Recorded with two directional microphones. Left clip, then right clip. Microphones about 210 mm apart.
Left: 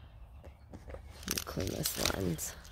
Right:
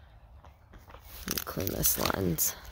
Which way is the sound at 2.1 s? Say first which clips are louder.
Right 6 dB; 50° right (ahead or behind).